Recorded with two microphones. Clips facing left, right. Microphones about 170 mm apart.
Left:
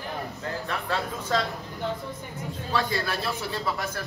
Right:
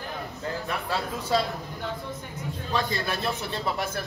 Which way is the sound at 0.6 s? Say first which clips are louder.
Left 1 dB; 15° right (ahead or behind).